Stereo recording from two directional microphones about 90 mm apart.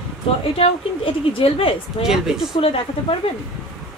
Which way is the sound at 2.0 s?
5° right (ahead or behind).